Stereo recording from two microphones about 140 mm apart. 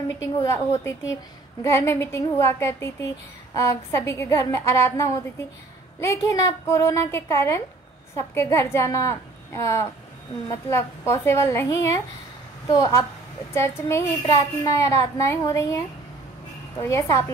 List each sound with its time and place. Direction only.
0.2 s a child's voice: 20° left (ahead or behind)
16.8 s a child's voice: 20° left (ahead or behind)